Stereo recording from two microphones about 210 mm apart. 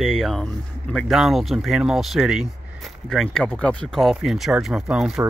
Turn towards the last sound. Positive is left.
turn(degrees=-5)  # may be behind; listen again after turning